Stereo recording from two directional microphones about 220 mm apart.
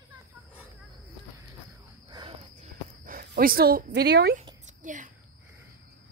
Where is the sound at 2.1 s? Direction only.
20° right (ahead or behind).